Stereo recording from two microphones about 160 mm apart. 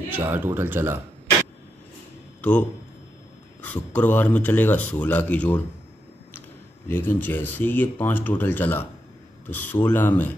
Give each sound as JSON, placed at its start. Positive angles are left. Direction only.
{"t": 0.1, "sound": "speech", "side_deg": -15}
{"t": 3.6, "sound": "speech", "side_deg": 10}
{"t": 6.9, "sound": "speech", "side_deg": 10}